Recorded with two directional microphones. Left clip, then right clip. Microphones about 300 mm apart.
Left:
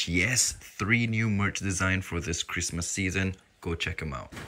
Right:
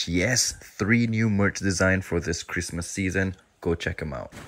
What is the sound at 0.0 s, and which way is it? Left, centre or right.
Speech, centre.